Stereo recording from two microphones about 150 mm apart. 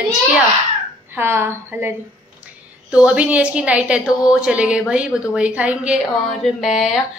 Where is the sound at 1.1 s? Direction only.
15° right (ahead or behind).